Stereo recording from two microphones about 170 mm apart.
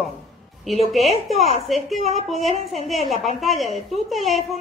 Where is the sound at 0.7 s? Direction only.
Centre (ahead or behind).